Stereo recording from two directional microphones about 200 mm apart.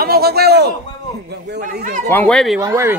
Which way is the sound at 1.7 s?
40° right (ahead or behind).